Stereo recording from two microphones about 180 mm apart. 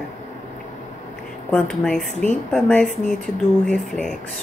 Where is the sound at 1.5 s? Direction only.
5° left (ahead or behind).